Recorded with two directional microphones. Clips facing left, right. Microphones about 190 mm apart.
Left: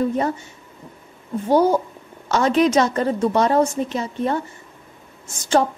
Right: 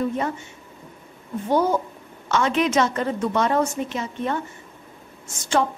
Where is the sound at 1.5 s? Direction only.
35° left (ahead or behind).